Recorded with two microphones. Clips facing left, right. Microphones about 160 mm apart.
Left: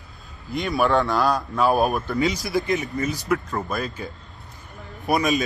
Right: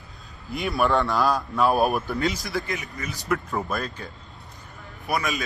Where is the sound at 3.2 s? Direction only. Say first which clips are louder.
Left 2 dB; centre (ahead or behind).